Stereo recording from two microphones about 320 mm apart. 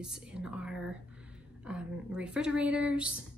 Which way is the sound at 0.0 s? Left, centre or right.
Centre.